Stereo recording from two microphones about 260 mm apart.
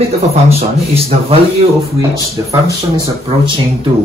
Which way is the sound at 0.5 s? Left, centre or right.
Right.